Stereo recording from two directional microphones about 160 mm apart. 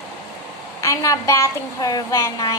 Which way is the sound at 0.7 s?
20° left (ahead or behind).